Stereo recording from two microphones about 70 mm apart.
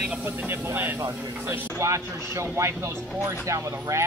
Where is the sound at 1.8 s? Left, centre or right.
Right.